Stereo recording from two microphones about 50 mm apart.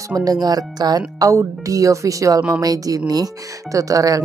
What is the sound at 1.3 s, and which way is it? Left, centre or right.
Speech, right.